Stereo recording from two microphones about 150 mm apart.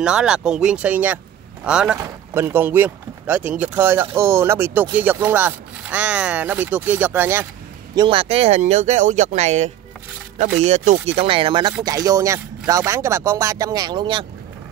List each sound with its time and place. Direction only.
0.0 s speech: 5° right (ahead or behind)
7.9 s speech: 30° right (ahead or behind)